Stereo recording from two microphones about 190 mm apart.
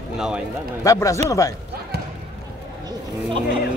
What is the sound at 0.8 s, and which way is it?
Speech, 15° left (ahead or behind).